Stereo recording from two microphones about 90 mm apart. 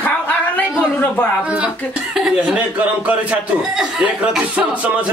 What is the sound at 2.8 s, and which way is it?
A man's voice, 15° right (ahead or behind).